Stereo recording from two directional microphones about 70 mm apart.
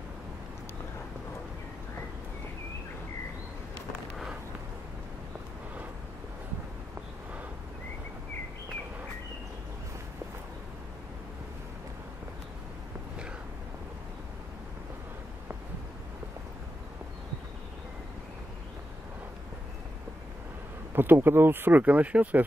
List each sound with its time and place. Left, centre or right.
20.9 s speech: right